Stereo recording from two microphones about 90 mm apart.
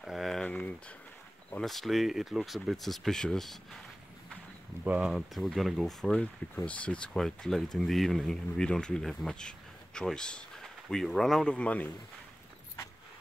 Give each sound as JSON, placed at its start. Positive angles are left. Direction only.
{"t": 0.0, "sound": "a sound", "side_deg": 0}
{"t": 0.5, "sound": "a sound", "side_deg": 15}
{"t": 1.5, "sound": "speech", "side_deg": 5}
{"t": 4.8, "sound": "speech", "side_deg": -15}
{"t": 5.1, "sound": "speech", "side_deg": 0}
{"t": 6.5, "sound": "speech", "side_deg": 15}
{"t": 11.5, "sound": "a man's voice", "side_deg": 15}